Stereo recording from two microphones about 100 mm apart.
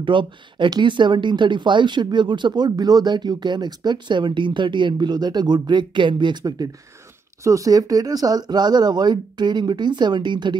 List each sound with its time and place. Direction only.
0.0 s speech: 55° right (ahead or behind)
7.4 s speech: 35° right (ahead or behind); by 10.6 s 50° right (ahead or behind)